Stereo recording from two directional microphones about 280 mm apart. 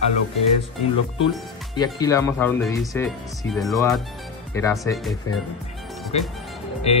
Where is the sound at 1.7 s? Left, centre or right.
Centre.